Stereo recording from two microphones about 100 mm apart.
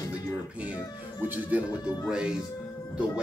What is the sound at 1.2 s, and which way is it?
Speech, 15° right (ahead or behind).